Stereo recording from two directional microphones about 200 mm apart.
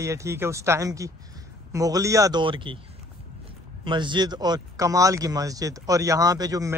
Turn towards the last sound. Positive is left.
turn(degrees=-15)  # may be behind; listen again after turning